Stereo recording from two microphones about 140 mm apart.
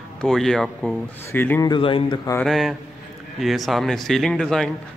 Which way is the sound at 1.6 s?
35° left (ahead or behind).